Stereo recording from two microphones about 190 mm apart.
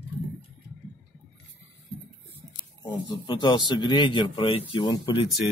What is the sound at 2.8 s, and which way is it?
Speech, 25° left (ahead or behind).